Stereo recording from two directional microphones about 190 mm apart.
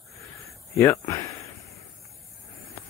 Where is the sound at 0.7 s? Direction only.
15° left (ahead or behind).